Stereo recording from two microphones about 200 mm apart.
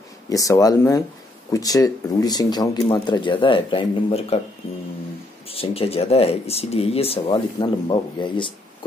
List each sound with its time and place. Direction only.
0.3 s speech: 15° left (ahead or behind)
5.5 s speech: 30° left (ahead or behind)